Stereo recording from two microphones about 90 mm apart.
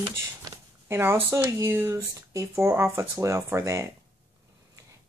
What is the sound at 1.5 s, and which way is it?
Speech, 35° right (ahead or behind).